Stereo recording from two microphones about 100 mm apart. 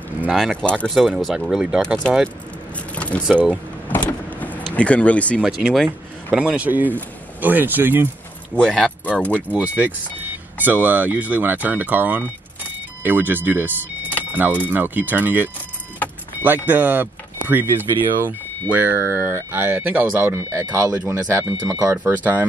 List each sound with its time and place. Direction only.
0.6 s speech: 10° left (ahead or behind)
0.9 s speech: 5° right (ahead or behind)
2.9 s vehicle: 15° left (ahead or behind)
3.3 s speech: 10° right (ahead or behind)
3.9 s vehicle: 15° left (ahead or behind)
4.7 s speech: 15° left (ahead or behind)
5.4 s speech: 10° right (ahead or behind)
8.5 s speech: 5° left (ahead or behind)
9.5 s speech: 15° right (ahead or behind); by 21.9 s 30° right (ahead or behind)
22.0 s speech: 20° right (ahead or behind)